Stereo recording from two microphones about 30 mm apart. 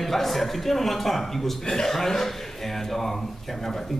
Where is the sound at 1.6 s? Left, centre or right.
Centre.